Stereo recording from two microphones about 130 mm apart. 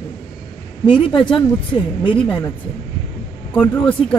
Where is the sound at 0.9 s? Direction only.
40° left (ahead or behind).